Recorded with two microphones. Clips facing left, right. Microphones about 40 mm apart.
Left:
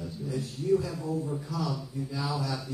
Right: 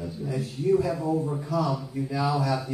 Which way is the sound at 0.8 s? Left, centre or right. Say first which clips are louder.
Right 7 dB; right.